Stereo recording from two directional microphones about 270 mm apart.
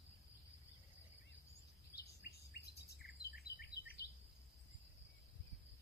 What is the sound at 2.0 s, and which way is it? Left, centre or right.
Bird vocalization, left.